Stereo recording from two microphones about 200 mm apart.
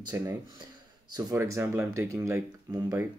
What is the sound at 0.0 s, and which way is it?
Speech, 15° right (ahead or behind).